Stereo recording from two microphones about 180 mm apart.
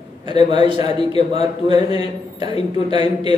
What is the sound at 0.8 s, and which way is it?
A man's voice, 35° left (ahead or behind).